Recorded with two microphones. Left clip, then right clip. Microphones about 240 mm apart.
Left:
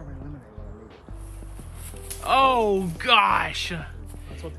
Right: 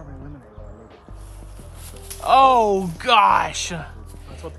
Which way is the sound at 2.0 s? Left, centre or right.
Centre.